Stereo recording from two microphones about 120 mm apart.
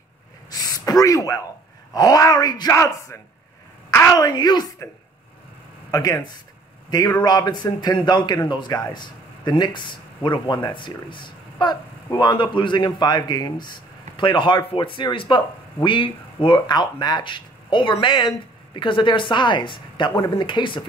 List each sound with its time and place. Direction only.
0.5 s gasp: 30° left (ahead or behind)
2.0 s a woman's voice: 30° left (ahead or behind)
5.9 s a man's voice: 30° left (ahead or behind)